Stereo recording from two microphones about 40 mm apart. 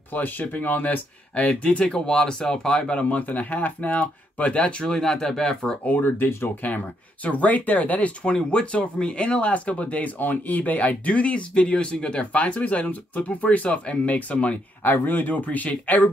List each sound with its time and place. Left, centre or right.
0.1 s speech: left
1.6 s speech: left
2.0 s speech: centre
2.7 s speech: left
4.8 s speech: centre
6.0 s speech: left
7.2 s speech: left
8.3 s speech: left
12.5 s speech: left
14.8 s speech: left